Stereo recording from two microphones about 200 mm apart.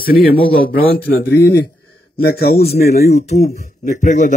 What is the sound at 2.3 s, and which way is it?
Speech, 50° left (ahead or behind).